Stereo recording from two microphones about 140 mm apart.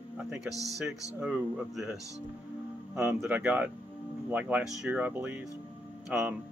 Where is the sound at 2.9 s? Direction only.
15° right (ahead or behind).